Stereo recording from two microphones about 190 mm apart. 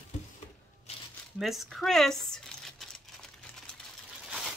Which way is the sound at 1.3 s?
Centre (ahead or behind).